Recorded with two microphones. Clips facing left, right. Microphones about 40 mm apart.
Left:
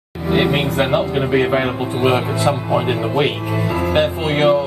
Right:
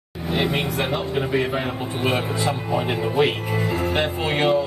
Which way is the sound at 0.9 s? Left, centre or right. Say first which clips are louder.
Left 6 dB; left.